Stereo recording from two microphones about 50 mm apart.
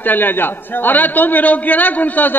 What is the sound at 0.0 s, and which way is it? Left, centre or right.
A man's voice, left.